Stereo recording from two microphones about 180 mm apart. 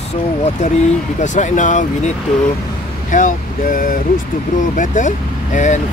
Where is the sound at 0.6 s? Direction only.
40° left (ahead or behind).